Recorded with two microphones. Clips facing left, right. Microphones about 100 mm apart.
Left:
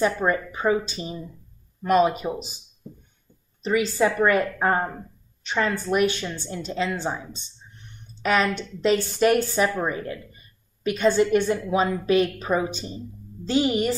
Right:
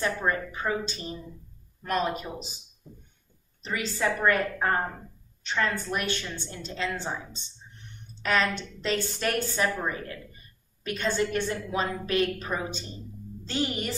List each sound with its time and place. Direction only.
0.0 s speech: 15° left (ahead or behind)
3.6 s speech: 15° left (ahead or behind)
8.2 s speech: 10° left (ahead or behind)